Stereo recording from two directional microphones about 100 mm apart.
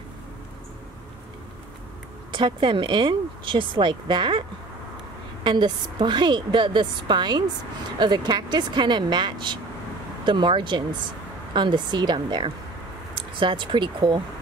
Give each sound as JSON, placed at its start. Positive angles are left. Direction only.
{"t": 2.3, "sound": "a woman's voice", "side_deg": -55}